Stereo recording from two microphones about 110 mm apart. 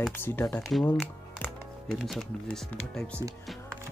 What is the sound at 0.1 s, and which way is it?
Speech, 20° left (ahead or behind).